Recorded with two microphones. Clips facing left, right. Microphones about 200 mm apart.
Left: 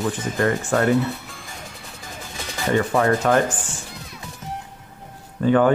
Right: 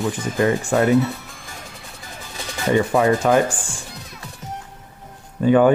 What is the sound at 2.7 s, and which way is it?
Speech, 15° right (ahead or behind).